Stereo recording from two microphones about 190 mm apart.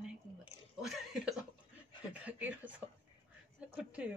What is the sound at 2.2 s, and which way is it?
Speech, 10° right (ahead or behind).